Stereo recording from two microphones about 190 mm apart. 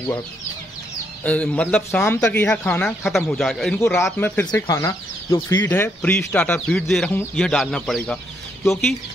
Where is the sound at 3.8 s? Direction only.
15° left (ahead or behind).